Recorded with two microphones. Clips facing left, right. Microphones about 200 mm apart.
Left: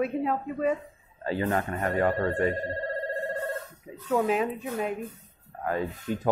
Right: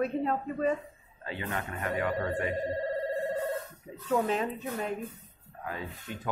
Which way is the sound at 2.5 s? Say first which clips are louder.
Right 1 dB; 10° right (ahead or behind).